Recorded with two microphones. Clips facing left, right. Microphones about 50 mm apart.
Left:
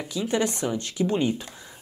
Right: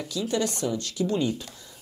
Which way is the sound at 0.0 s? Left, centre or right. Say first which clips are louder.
Left 2 dB; left.